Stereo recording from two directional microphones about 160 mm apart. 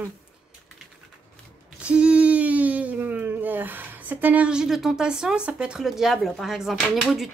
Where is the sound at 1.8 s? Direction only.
5° right (ahead or behind).